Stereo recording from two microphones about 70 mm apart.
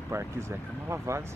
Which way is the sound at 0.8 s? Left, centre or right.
Right.